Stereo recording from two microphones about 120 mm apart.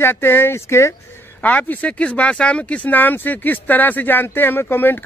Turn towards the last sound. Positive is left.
turn(degrees=15)  # may be behind; listen again after turning